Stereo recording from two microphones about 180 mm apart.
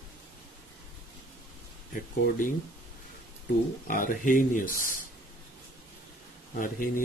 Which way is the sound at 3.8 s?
50° left (ahead or behind).